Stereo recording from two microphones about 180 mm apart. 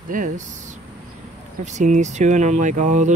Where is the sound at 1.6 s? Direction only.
40° right (ahead or behind).